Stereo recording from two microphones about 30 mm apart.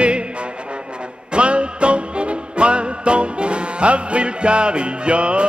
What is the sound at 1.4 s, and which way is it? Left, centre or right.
Music, right.